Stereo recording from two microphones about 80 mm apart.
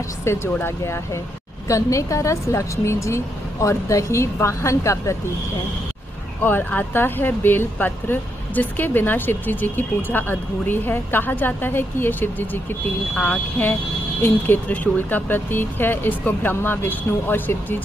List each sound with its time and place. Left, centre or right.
0.2 s speech: left
6.4 s speech: left